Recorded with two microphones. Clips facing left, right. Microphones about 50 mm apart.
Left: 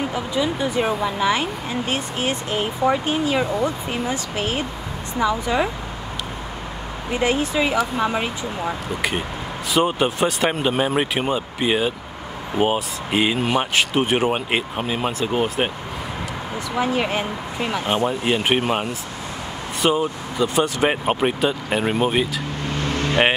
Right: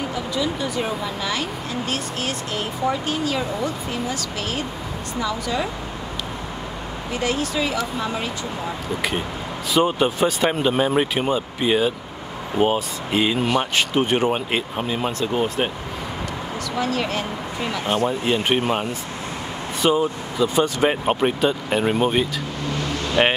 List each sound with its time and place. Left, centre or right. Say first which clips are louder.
0.1 s speech: left 2 dB; left
7.1 s speech: left 3 dB; left
9.8 s speech: even; centre
16.7 s speech: left 3 dB; centre
19.8 s speech: right 1 dB; centre